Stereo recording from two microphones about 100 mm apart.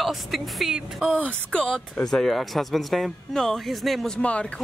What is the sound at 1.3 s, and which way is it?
Speech, 10° left (ahead or behind).